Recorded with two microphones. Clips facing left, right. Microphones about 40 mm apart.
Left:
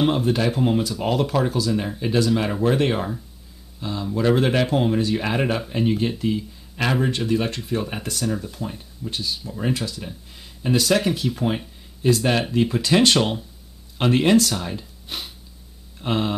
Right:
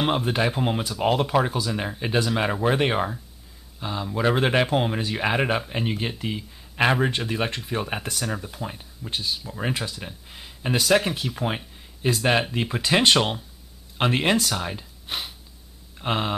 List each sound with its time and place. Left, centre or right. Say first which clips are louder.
0.0 s speech: left 3 dB; right
10.8 s speech: even; centre